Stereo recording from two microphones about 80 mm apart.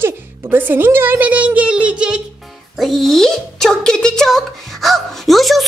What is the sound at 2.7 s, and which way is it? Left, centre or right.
Speech, centre.